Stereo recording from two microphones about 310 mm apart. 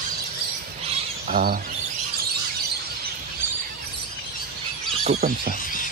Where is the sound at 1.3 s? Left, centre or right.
Right.